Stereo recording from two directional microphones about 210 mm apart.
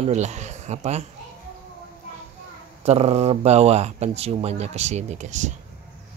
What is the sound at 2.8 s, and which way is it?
Speech, 30° right (ahead or behind).